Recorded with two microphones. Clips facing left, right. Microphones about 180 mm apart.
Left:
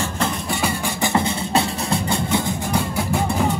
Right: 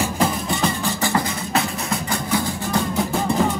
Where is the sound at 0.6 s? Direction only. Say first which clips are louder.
Even; 15° left (ahead or behind).